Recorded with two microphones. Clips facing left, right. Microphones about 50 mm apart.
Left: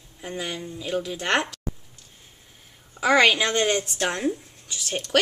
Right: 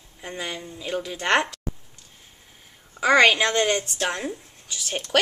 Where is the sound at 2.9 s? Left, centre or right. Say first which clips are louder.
Right 1 dB; centre.